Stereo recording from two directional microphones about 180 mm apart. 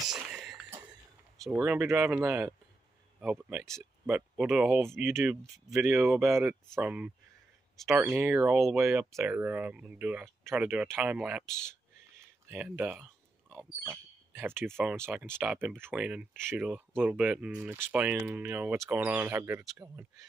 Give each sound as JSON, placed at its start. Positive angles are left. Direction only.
{"t": 0.0, "sound": "a sound", "side_deg": -5}
{"t": 1.5, "sound": "speech", "side_deg": -10}
{"t": 6.2, "sound": "speech", "side_deg": -15}
{"t": 11.4, "sound": "speech", "side_deg": 5}
{"t": 12.2, "sound": "a sound", "side_deg": -10}
{"t": 13.5, "sound": "speech", "side_deg": -10}